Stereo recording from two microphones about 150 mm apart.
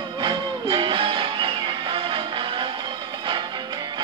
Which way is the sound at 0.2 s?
35° right (ahead or behind).